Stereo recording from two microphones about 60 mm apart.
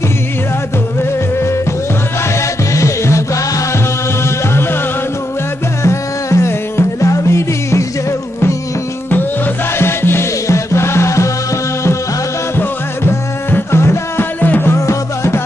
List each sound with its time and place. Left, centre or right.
2.7 s music: left
5.9 s music: left
9.8 s music: left
12.5 s music: left
14.4 s music: left
14.7 s music: left